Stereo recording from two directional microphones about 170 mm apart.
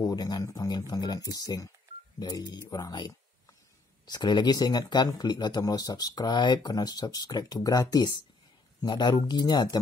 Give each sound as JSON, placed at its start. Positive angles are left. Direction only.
{"t": 0.0, "sound": "speech", "side_deg": 20}